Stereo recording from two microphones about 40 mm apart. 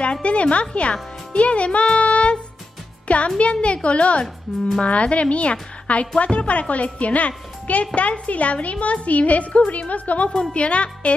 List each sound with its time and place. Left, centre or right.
0.0 s a woman's voice: left